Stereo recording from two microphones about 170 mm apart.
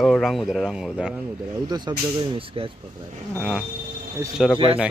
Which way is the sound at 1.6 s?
25° right (ahead or behind).